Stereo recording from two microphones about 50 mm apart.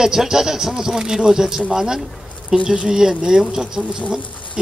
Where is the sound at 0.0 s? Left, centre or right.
Centre.